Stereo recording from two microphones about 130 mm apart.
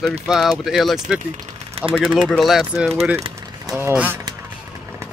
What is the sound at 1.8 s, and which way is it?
Speech, 45° right (ahead or behind).